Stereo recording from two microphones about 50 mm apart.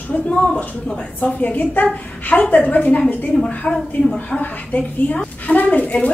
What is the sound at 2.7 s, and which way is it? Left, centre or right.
Speech, left.